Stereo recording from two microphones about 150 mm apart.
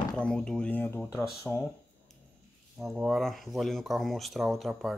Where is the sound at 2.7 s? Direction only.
5° right (ahead or behind).